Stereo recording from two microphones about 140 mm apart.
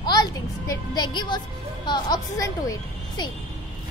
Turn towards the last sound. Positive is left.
turn(degrees=25)  # may be behind; listen again after turning